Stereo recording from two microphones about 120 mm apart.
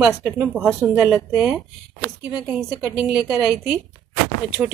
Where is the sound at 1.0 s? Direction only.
5° right (ahead or behind).